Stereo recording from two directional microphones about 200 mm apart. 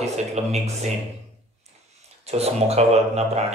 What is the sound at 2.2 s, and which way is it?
A man's voice, 30° right (ahead or behind).